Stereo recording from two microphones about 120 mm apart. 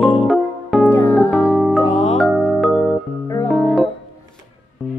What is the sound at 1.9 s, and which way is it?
Music, 80° left.